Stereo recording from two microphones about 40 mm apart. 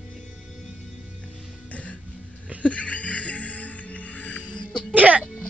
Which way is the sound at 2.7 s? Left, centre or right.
Left.